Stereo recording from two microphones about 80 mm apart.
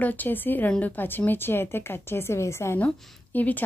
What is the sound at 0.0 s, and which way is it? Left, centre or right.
Speech, left.